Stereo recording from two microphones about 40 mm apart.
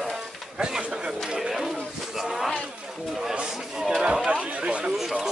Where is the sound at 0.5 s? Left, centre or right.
Right.